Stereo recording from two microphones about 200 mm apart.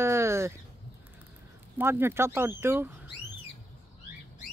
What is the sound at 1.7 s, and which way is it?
Speech, 10° right (ahead or behind).